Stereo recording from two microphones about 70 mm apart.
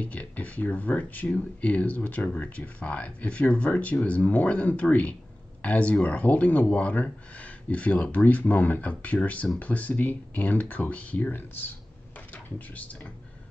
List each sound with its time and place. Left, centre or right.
0.0 s speech: centre